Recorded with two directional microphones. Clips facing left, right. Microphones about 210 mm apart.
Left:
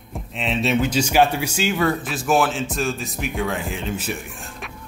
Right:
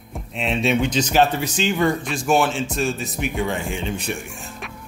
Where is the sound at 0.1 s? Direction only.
Centre (ahead or behind).